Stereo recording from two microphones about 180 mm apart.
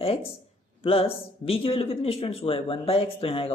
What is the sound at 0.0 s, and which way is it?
A man's voice, 30° left (ahead or behind).